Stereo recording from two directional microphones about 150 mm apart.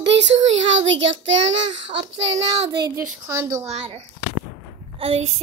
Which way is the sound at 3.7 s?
45° right (ahead or behind).